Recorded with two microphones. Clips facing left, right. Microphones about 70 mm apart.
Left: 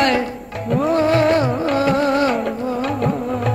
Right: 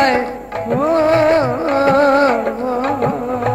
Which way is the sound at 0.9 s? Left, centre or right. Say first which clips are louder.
Right 3 dB; right.